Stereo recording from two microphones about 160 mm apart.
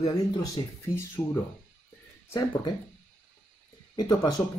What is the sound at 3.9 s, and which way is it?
Speech, 20° left (ahead or behind).